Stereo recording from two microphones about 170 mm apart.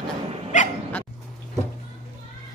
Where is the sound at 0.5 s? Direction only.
45° left (ahead or behind).